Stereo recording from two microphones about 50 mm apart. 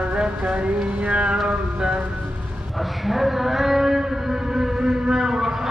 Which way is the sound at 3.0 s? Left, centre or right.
Centre.